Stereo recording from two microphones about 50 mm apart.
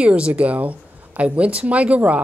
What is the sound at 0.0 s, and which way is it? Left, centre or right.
Speech, right.